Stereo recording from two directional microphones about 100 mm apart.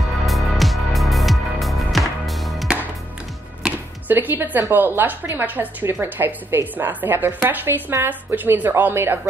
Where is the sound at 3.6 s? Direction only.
20° right (ahead or behind).